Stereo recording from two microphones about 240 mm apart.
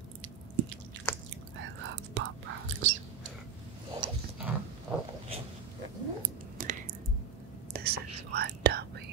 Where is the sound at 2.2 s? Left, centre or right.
Right.